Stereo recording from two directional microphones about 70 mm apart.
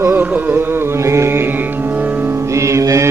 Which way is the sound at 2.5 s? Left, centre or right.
Right.